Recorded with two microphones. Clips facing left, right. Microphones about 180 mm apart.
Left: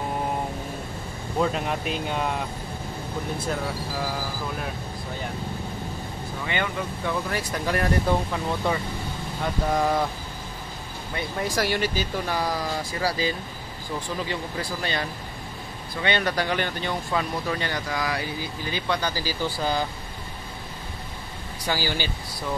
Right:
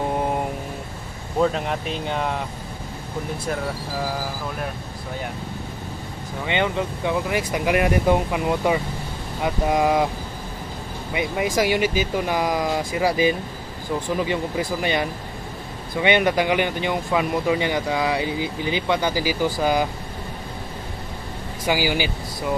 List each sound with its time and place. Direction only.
1.4 s speech: centre (ahead or behind)
6.4 s speech: 20° right (ahead or behind)
11.1 s speech: 15° right (ahead or behind)
21.6 s speech: 15° right (ahead or behind)